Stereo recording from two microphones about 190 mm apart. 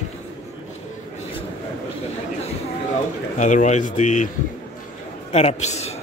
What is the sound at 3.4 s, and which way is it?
Speech, 40° left (ahead or behind).